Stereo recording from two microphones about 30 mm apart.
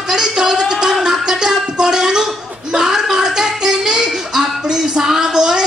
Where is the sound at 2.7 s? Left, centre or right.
Right.